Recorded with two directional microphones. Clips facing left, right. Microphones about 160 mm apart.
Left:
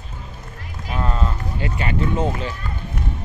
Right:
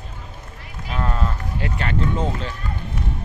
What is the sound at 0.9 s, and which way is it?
Speech, centre (ahead or behind).